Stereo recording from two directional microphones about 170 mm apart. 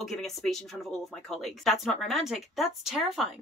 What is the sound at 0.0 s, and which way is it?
Speech, centre (ahead or behind).